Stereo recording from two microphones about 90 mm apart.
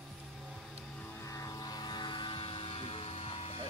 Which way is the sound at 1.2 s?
35° left (ahead or behind).